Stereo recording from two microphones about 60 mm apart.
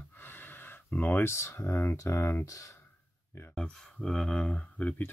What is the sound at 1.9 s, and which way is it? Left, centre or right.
Speech, left.